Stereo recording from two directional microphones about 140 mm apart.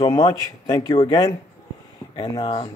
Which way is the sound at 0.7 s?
30° left (ahead or behind).